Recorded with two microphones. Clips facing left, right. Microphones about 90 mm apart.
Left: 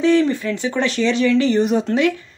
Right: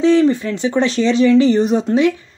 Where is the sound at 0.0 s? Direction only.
20° right (ahead or behind).